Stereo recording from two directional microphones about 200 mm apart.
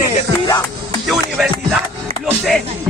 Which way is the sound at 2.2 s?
Centre (ahead or behind).